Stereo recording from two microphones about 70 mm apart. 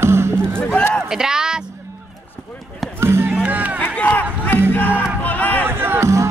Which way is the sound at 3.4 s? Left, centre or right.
Right.